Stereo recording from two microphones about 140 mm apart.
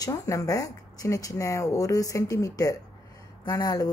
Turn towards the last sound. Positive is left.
turn(degrees=25)  # may be behind; listen again after turning